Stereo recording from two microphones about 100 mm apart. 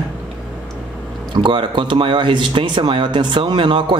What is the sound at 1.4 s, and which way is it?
A man's voice, 55° right (ahead or behind).